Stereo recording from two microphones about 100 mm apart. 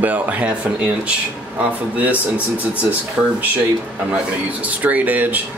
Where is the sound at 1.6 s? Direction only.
15° right (ahead or behind).